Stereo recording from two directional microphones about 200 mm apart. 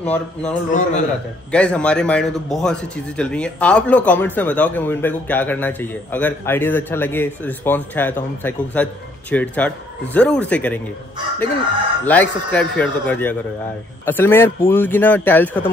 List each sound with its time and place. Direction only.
0.0 s a man's voice: 5° left (ahead or behind)
0.7 s a man's voice: 40° left (ahead or behind)
1.5 s a man's voice: 5° left (ahead or behind)
12.0 s a man's voice: 10° left (ahead or behind)